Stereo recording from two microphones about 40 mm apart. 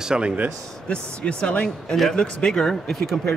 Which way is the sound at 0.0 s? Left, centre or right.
Right.